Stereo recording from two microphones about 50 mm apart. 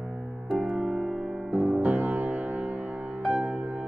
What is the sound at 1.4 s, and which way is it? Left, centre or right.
Music, right.